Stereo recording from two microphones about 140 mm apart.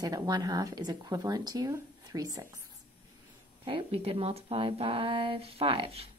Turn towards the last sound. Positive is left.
turn(degrees=-40)  # may be behind; listen again after turning